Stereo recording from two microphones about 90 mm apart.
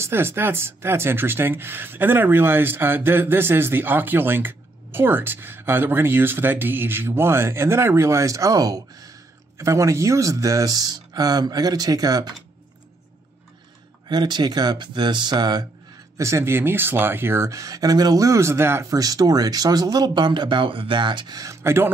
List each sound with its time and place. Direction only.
0.0 s speech: 25° right (ahead or behind); by 12.4 s 45° right (ahead or behind)
14.0 s speech: 55° right (ahead or behind)
16.2 s speech: 35° right (ahead or behind); by 21.4 s 60° right (ahead or behind)
21.4 s speech: 30° right (ahead or behind)